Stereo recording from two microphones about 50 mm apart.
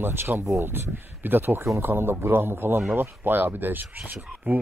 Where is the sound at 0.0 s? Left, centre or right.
Right.